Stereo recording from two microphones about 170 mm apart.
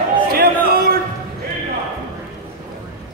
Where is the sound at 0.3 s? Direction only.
60° right (ahead or behind).